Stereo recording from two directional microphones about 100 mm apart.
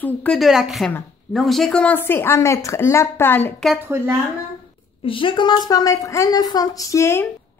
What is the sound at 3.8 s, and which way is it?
Speech, 25° right (ahead or behind).